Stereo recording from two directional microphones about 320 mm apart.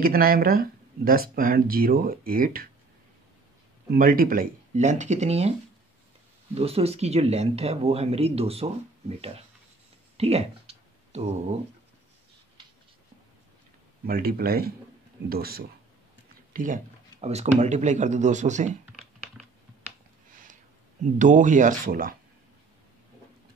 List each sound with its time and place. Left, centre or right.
0.0 s speech: right
3.9 s speech: right
6.5 s speech: centre
10.1 s clicking: centre
14.0 s speech: right
18.9 s typing: centre
21.0 s speech: right